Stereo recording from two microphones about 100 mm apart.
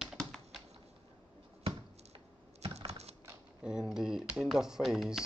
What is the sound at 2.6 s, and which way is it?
Typing, 85° right.